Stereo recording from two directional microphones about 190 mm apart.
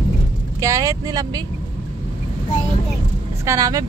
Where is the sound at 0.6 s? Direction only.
15° right (ahead or behind).